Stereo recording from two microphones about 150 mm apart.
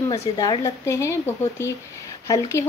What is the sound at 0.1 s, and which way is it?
Speech, 25° left (ahead or behind).